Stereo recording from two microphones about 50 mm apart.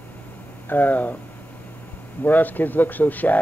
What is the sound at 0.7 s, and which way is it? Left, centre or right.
Speech, left.